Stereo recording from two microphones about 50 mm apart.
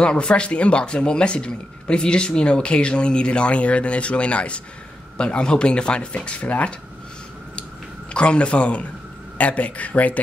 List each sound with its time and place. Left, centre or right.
0.0 s speech: centre
8.1 s speech: left